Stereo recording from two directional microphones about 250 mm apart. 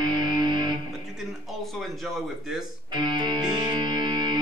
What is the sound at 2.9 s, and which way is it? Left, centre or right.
Music, centre.